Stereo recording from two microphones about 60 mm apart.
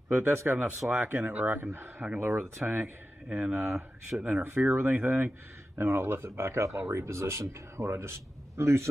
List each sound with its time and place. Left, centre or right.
0.1 s speech: right
1.6 s speech: right
2.8 s speech: right
4.5 s speech: right